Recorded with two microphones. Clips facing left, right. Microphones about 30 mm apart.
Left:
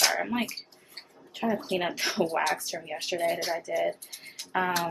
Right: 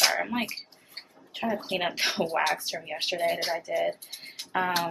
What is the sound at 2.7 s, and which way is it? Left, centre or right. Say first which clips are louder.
Speech: right 2 dB; right.